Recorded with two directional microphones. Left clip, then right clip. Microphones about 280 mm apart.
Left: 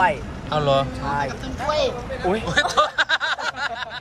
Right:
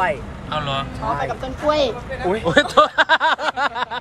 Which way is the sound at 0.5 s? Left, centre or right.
Centre.